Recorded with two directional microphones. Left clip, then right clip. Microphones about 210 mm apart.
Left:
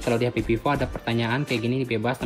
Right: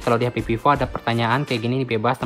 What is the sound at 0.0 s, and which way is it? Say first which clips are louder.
Speech: right 3 dB; 15° right (ahead or behind).